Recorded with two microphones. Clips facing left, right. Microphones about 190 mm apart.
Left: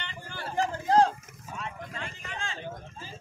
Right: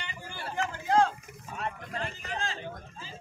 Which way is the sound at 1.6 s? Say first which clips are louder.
Right 4 dB; 40° right (ahead or behind).